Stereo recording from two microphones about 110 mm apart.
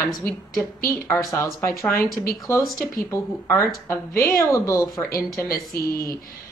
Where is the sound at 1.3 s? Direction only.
25° left (ahead or behind).